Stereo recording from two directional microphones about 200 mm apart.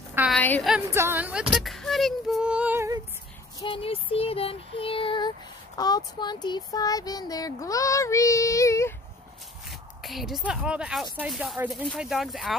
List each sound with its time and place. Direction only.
0.3 s a woman's voice: 10° left (ahead or behind)
0.7 s speech: 10° right (ahead or behind)
1.5 s music: centre (ahead or behind)
3.5 s child singing: 25° left (ahead or behind)
9.7 s speech: centre (ahead or behind)
11.1 s music: centre (ahead or behind)